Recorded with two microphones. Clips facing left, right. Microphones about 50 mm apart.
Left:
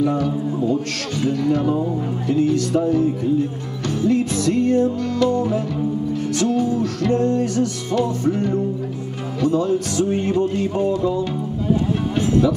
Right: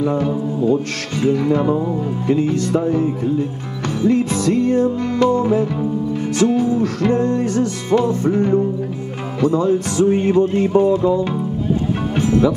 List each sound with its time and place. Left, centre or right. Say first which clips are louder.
0.0 s music: right 1 dB; right
12.2 s music: right 2 dB; right